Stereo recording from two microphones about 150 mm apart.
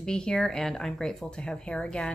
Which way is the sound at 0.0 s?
5° left (ahead or behind).